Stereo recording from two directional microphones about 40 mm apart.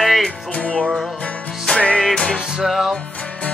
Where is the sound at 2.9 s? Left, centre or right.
Left.